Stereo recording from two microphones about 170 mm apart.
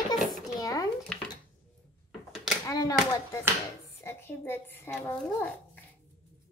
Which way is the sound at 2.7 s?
20° left (ahead or behind).